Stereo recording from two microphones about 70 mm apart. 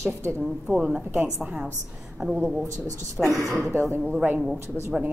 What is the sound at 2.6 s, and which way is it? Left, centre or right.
Speech, right.